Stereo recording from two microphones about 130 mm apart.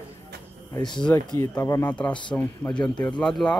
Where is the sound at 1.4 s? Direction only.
20° left (ahead or behind).